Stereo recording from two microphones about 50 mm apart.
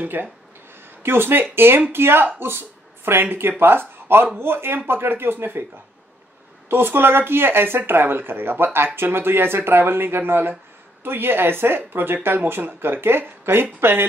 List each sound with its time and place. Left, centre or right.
0.0 s speech: right
6.7 s speech: right